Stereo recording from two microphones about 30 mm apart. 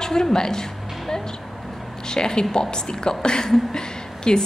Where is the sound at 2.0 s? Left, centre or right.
Left.